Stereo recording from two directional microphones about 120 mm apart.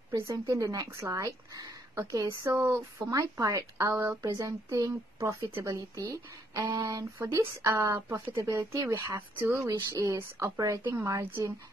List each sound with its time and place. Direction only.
0.1 s a woman's voice: 30° right (ahead or behind)